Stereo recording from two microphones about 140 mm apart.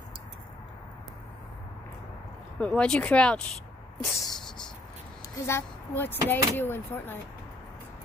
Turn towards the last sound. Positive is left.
turn(degrees=15)  # may be behind; listen again after turning